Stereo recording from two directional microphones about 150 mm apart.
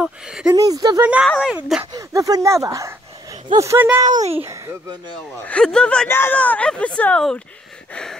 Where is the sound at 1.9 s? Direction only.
20° right (ahead or behind).